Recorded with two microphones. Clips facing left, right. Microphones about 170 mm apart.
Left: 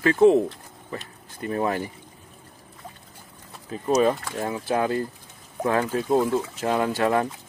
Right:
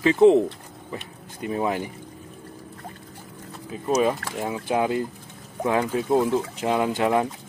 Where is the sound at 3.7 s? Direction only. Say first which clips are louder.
Left 1 dB; 10° right (ahead or behind).